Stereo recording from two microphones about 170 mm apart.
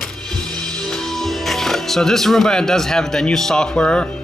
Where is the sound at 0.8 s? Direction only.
Centre (ahead or behind).